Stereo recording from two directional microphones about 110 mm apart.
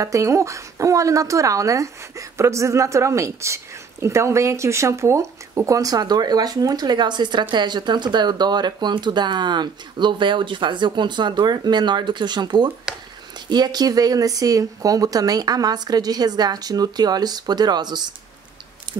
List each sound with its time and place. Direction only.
0.0 s a woman's voice: 30° right (ahead or behind)